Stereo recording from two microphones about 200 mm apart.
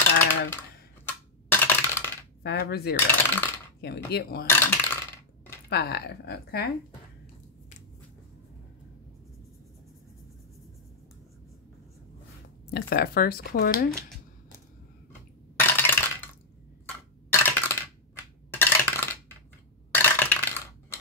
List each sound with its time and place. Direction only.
1.0 s coin: 10° left (ahead or behind)
2.4 s speech: 50° left (ahead or behind)
3.1 s coin: 10° left (ahead or behind)
4.1 s speech: 50° left (ahead or behind)
4.5 s speech: 10° left (ahead or behind)
5.7 s a woman's voice: 55° left (ahead or behind)
12.7 s speech: 50° left (ahead or behind)
15.5 s a sound: 10° left (ahead or behind)
17.3 s a sound: 10° left (ahead or behind)
19.9 s coin: 10° left (ahead or behind)